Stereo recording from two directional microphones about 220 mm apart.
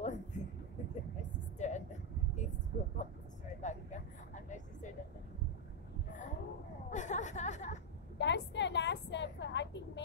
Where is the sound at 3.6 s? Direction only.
35° left (ahead or behind).